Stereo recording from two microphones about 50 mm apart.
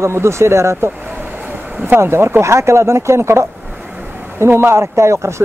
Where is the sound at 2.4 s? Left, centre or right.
Right.